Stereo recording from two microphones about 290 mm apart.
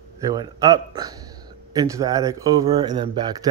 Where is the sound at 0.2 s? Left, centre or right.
Centre.